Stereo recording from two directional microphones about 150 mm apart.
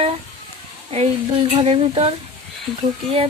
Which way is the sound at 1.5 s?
40° right (ahead or behind).